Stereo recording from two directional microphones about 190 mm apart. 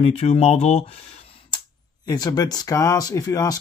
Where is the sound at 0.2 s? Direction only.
35° left (ahead or behind).